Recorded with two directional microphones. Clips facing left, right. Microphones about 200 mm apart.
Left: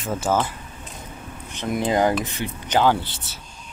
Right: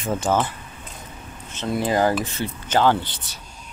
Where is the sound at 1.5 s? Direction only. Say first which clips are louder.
Even; 15° left (ahead or behind).